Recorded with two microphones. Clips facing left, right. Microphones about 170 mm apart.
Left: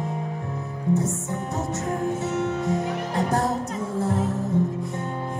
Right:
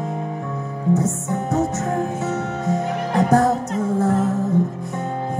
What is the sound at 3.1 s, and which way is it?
Music, 80° right.